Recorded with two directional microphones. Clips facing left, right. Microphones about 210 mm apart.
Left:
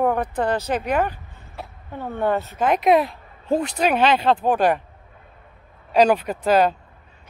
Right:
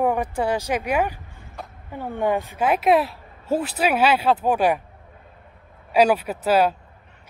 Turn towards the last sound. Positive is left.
turn(degrees=-5)  # may be behind; listen again after turning